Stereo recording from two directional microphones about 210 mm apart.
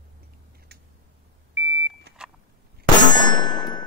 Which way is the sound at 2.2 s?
5° right (ahead or behind).